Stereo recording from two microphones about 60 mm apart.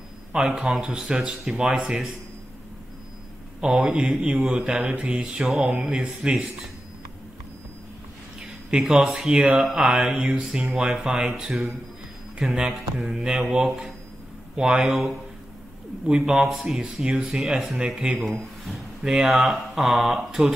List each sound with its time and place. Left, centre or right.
0.3 s speech: centre
3.6 s speech: centre
8.6 s speech: centre
13.7 s speech: centre
14.6 s speech: centre
16.2 s speech: centre